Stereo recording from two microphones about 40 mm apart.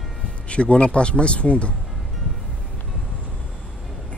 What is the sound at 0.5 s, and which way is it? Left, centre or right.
Speech, left.